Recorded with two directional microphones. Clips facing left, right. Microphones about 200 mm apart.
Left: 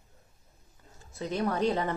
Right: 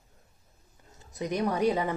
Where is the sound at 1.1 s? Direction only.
15° right (ahead or behind).